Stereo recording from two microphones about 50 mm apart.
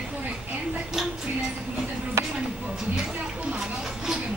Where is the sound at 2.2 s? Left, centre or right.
Right.